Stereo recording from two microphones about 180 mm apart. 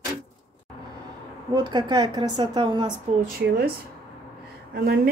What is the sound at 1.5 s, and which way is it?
Speech, 25° right (ahead or behind).